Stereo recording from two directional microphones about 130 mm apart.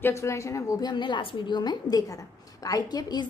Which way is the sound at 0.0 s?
20° left (ahead or behind).